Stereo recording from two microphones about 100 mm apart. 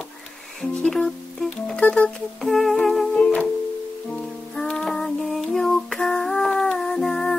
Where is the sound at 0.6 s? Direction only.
5° left (ahead or behind).